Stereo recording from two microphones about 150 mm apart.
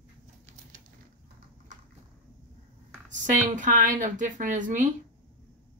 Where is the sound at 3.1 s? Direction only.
55° right (ahead or behind).